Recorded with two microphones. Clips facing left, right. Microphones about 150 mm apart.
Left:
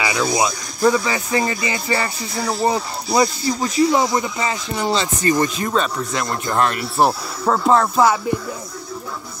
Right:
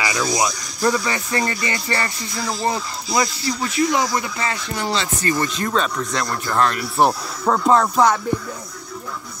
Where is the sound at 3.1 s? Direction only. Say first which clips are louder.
Left 4 dB; 30° left (ahead or behind); by 6.8 s 10° left (ahead or behind).